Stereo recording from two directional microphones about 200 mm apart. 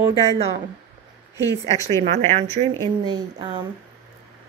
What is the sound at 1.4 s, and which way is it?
Speech, 15° left (ahead or behind).